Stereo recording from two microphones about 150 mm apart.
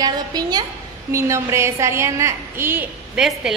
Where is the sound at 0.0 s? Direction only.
25° right (ahead or behind).